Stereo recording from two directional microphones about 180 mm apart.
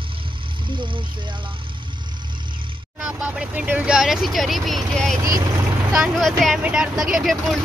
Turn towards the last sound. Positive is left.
turn(degrees=0)  # may be behind; listen again after turning